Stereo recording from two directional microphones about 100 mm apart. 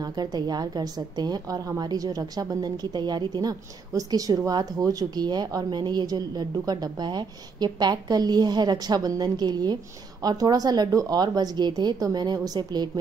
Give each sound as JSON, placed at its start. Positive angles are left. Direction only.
{"t": 0.0, "sound": "a woman's voice", "side_deg": -40}